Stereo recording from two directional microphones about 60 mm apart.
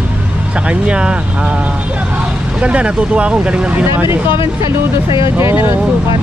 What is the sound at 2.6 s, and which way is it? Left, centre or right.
Speech, centre.